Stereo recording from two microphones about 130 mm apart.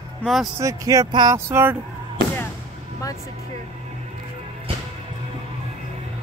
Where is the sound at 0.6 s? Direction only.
25° right (ahead or behind).